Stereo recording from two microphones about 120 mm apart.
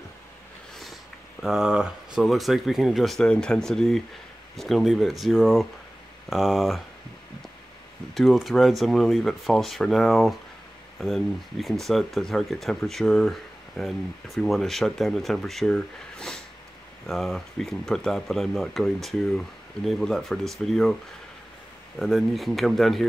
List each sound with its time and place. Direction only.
1.4 s speech: 5° right (ahead or behind)
8.1 s speech: centre (ahead or behind)
21.9 s speech: centre (ahead or behind)